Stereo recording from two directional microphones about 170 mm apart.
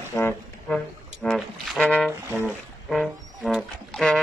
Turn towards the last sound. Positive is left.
turn(degrees=5)  # may be behind; listen again after turning